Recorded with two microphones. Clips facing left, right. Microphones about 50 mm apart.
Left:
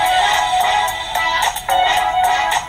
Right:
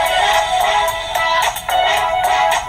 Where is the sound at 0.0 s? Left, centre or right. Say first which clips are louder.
Even; right.